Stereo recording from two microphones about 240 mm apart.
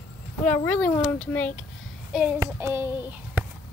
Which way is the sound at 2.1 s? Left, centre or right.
Centre.